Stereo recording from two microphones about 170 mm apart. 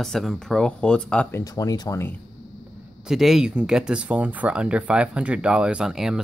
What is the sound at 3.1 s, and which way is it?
Speech, centre (ahead or behind).